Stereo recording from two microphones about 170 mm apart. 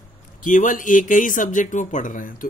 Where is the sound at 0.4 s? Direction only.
50° left (ahead or behind).